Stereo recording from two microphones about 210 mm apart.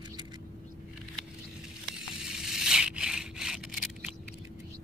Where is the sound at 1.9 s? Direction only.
5° right (ahead or behind).